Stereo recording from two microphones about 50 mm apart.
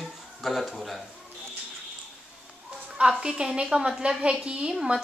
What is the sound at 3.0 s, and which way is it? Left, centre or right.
A woman's voice, centre.